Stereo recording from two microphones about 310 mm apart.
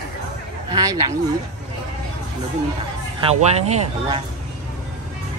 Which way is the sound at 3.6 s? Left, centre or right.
Right.